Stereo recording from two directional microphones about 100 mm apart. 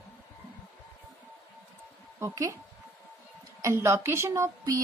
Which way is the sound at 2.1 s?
30° right (ahead or behind).